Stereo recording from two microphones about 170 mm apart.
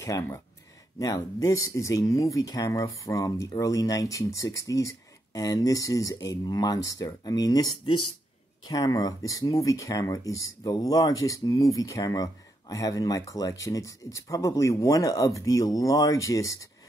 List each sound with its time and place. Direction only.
0.0 s speech: 15° left (ahead or behind)